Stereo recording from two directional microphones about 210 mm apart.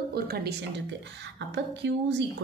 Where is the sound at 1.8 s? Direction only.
55° right (ahead or behind).